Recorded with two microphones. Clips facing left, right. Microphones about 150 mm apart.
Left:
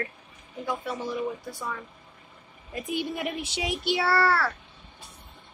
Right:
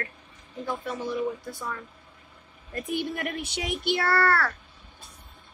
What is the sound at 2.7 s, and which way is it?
Speech, 10° left (ahead or behind).